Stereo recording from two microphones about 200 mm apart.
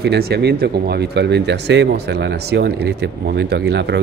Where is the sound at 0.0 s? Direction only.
55° right (ahead or behind).